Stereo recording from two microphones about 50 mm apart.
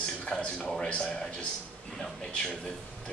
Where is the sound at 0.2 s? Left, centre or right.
Left.